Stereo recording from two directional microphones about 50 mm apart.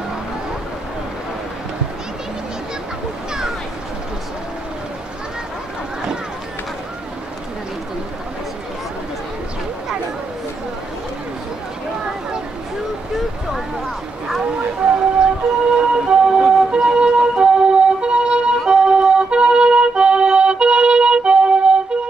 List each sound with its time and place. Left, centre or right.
14.4 s emergency vehicle: right
18.7 s music: centre